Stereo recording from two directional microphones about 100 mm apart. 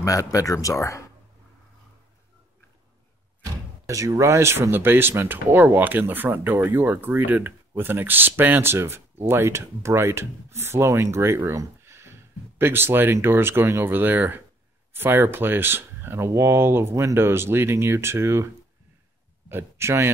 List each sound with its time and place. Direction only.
0.0 s speech: 35° left (ahead or behind)
3.8 s speech: 35° right (ahead or behind)
19.5 s speech: 25° right (ahead or behind)